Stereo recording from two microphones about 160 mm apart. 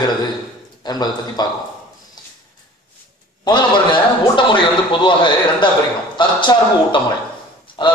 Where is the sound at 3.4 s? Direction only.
30° left (ahead or behind).